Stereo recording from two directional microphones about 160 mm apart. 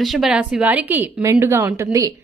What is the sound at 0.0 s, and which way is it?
A woman's voice, centre (ahead or behind).